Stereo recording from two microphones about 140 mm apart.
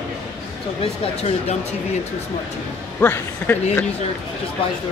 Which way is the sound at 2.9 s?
15° left (ahead or behind).